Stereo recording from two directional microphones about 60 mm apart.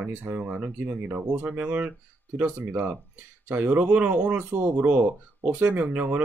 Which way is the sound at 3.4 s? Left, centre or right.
Right.